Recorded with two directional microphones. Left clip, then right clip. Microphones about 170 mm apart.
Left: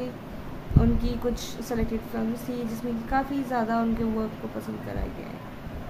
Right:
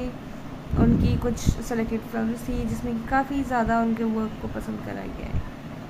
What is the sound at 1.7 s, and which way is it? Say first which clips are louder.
A woman's voice: right 1 dB; 15° right (ahead or behind).